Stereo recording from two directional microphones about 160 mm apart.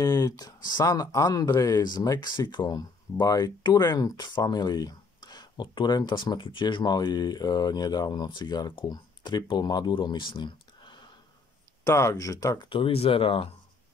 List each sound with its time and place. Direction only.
0.0 s speech: 25° left (ahead or behind)
12.6 s speech: 35° left (ahead or behind)